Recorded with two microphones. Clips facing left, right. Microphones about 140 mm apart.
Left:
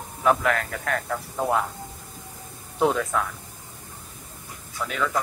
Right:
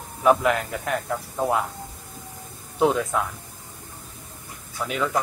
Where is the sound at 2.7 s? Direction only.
10° right (ahead or behind).